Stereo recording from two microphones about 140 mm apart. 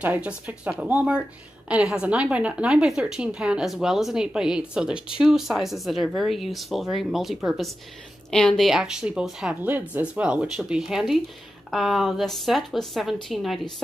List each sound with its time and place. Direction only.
0.0 s a woman's voice: 10° right (ahead or behind)